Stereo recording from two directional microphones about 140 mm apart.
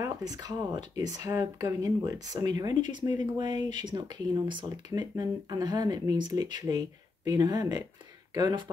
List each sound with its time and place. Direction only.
0.0 s speech: 30° right (ahead or behind)